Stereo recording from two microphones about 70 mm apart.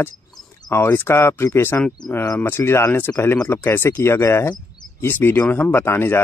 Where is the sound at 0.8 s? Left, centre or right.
Left.